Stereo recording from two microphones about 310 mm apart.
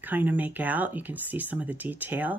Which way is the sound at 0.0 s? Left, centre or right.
Centre.